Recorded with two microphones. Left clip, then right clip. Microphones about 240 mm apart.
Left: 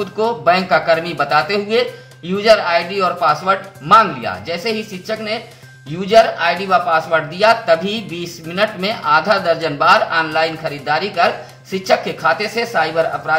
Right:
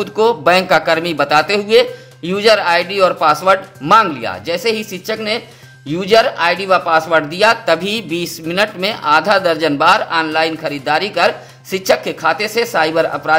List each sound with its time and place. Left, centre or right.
0.0 s a man's voice: right